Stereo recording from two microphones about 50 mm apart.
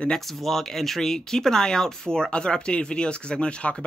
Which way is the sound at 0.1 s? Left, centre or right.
Centre.